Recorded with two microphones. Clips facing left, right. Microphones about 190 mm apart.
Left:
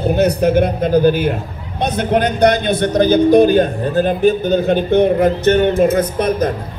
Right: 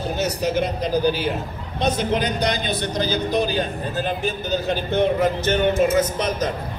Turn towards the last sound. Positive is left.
turn(degrees=55)  # may be behind; listen again after turning